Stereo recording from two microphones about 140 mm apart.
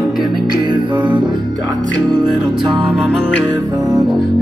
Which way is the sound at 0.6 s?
35° right (ahead or behind).